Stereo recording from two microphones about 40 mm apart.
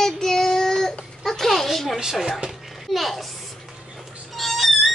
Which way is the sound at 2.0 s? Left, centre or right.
Centre.